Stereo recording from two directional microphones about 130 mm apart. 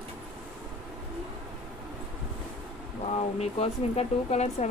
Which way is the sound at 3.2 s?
55° left (ahead or behind).